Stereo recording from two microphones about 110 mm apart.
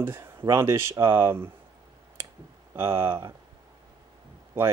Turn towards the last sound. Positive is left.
turn(degrees=-20)  # may be behind; listen again after turning